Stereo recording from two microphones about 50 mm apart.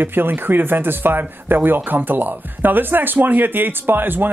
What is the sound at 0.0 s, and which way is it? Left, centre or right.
Speech, right.